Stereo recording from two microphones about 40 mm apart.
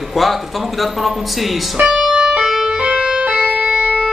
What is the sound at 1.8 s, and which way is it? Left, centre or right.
Speech, right.